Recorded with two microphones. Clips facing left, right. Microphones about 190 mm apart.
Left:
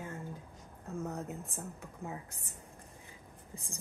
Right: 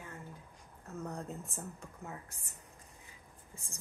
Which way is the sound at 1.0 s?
5° left (ahead or behind).